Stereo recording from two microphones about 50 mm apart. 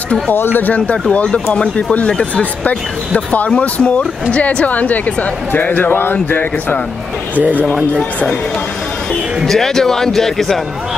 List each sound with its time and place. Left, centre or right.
0.3 s a woman's voice: left
9.5 s speech: centre